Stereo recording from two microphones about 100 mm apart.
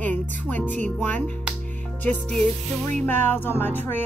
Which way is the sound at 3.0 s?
20° left (ahead or behind).